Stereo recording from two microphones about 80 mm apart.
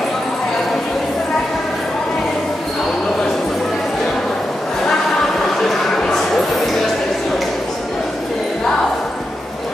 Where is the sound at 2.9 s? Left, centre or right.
Centre.